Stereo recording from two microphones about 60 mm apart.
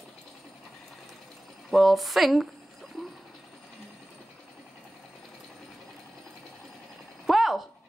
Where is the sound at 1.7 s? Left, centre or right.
Centre.